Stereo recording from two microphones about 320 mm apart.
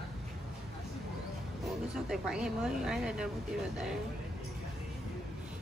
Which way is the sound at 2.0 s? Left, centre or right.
Centre.